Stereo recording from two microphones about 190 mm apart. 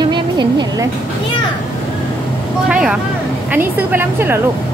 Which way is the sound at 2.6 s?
5° right (ahead or behind).